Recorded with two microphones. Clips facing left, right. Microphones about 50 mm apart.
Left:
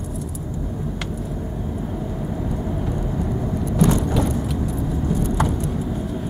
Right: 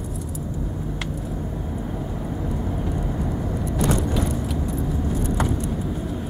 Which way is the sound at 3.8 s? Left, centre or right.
Centre.